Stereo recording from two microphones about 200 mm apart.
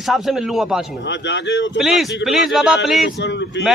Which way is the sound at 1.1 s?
60° left (ahead or behind).